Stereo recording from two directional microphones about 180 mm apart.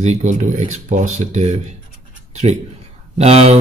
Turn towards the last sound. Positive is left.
turn(degrees=-35)  # may be behind; listen again after turning